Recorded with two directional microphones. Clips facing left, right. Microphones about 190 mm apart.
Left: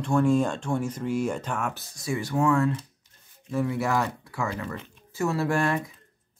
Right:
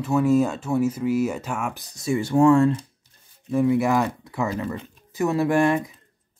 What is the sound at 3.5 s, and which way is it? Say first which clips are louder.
Speech: right 6 dB; 15° right (ahead or behind).